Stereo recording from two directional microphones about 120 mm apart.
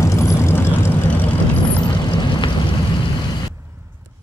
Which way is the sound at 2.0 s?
40° left (ahead or behind).